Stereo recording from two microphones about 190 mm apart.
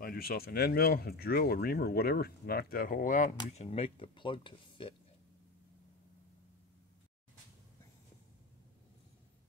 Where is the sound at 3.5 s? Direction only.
35° left (ahead or behind).